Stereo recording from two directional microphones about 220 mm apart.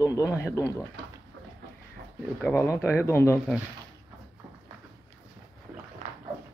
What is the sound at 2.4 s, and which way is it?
Speech, 10° left (ahead or behind).